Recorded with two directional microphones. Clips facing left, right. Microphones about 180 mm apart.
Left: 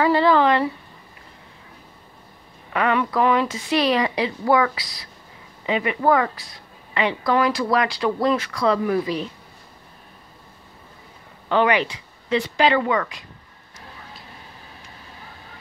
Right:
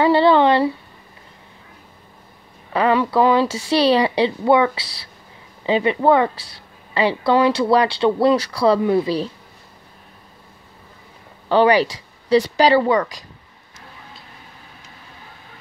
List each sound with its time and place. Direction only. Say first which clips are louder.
0.0 s a sound: right 3 dB; 30° right (ahead or behind)
2.7 s a woman's voice: right 4 dB; 30° right (ahead or behind)
11.4 s speech: right 5 dB; 35° right (ahead or behind)